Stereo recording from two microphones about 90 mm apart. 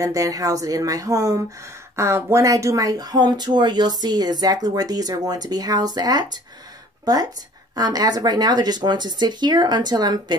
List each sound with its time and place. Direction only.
0.0 s speech: 40° right (ahead or behind)
2.0 s speech: 30° right (ahead or behind); by 6.4 s 50° right (ahead or behind)
7.7 s speech: 45° right (ahead or behind)